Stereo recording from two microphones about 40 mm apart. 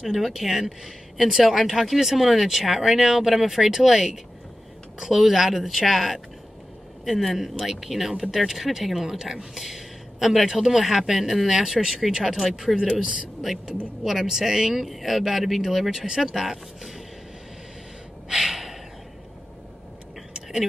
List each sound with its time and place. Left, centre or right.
0.0 s speech: centre
12.4 s a man's voice: centre
18.4 s gasp: centre